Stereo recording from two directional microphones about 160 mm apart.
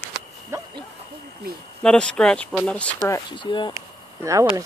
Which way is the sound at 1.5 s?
70° right (ahead or behind).